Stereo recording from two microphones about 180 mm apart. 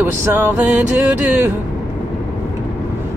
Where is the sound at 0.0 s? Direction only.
10° right (ahead or behind).